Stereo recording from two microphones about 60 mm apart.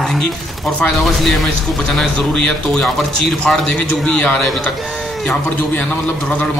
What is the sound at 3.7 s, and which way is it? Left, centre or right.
Speech, centre.